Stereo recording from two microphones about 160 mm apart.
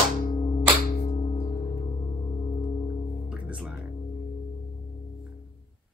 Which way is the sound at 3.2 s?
5° right (ahead or behind).